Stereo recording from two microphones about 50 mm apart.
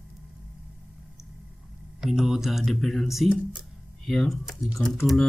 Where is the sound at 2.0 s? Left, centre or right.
Centre.